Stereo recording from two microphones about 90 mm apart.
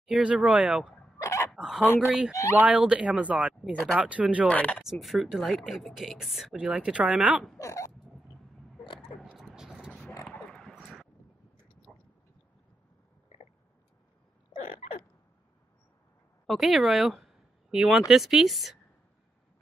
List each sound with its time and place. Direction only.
0.0 s speech: 10° right (ahead or behind)
1.2 s chicken: 35° left (ahead or behind)
1.5 s speech: 5° right (ahead or behind)
4.5 s speech: 15° left (ahead or behind)
4.9 s speech: centre (ahead or behind)
6.5 s speech: 15° right (ahead or behind)
7.5 s speech: 35° left (ahead or behind)
8.8 s a sound: 65° left (ahead or behind)
9.4 s vehicle: 5° right (ahead or behind)
11.9 s a sound: 15° left (ahead or behind)
16.4 s speech: centre (ahead or behind)